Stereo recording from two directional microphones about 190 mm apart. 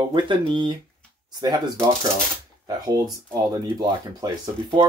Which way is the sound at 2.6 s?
20° right (ahead or behind).